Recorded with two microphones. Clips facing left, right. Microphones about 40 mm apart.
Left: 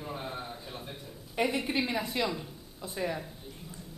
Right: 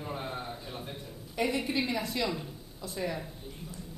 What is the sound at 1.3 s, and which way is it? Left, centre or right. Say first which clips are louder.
A woman's voice: left 1 dB; centre.